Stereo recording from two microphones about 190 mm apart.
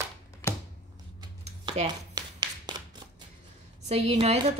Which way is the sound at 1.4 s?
35° right (ahead or behind).